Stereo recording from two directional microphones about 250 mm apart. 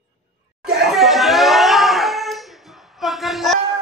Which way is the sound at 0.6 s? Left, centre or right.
Centre.